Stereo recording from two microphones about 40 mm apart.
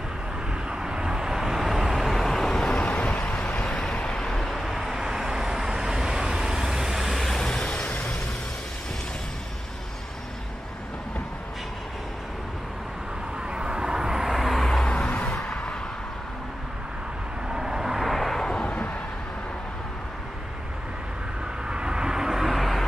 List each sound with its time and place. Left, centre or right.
0.7 s vehicle: centre
2.2 s vehicle: centre
2.7 s vehicle: left
3.6 s vehicle: centre
4.4 s vehicle: centre
4.9 s vehicle: centre
7.2 s vehicle: centre
7.6 s vehicle: left
13.5 s vehicle: right; by 14.7 s centre
15.0 s vehicle: left
17.5 s vehicle: centre
18.4 s vehicle: centre
21.6 s vehicle: right; by 22.8 s centre